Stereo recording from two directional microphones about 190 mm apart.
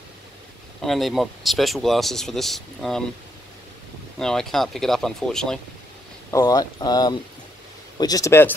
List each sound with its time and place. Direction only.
0.7 s speech: centre (ahead or behind)
4.2 s speech: 5° left (ahead or behind)
6.3 s speech: 20° left (ahead or behind)